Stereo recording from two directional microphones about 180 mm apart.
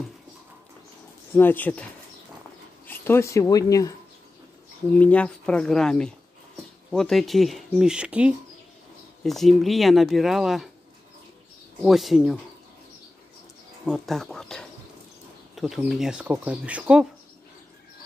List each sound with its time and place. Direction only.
1.3 s speech: 10° left (ahead or behind)
2.9 s speech: 15° left (ahead or behind)
4.9 s speech: 5° left (ahead or behind)
11.8 s speech: centre (ahead or behind)
13.8 s speech: centre (ahead or behind)